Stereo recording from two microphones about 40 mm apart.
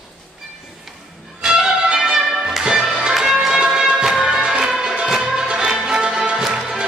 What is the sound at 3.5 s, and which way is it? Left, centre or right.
Music, centre.